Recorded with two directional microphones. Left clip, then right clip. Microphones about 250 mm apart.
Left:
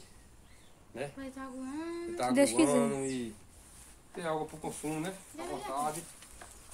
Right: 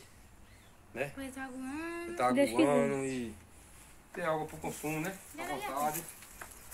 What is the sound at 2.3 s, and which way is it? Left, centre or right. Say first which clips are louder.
Speech: left 4 dB; centre.